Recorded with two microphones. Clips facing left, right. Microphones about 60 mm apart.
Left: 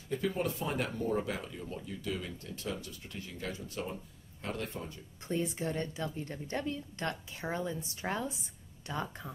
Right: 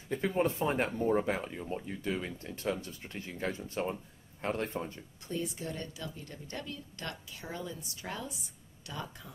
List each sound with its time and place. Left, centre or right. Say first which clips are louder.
0.1 s speech: right 3 dB; right
5.3 s a woman's voice: left 3 dB; left